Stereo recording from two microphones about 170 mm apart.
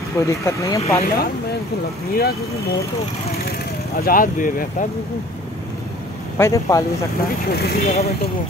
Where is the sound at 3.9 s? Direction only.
60° left (ahead or behind).